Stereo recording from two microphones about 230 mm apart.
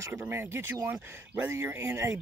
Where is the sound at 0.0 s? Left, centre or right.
Centre.